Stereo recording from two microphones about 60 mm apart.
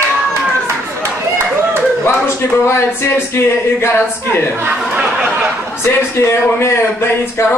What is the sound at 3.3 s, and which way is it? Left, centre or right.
A man's voice, left.